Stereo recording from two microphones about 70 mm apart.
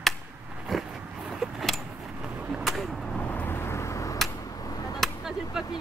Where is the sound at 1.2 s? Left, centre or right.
Centre.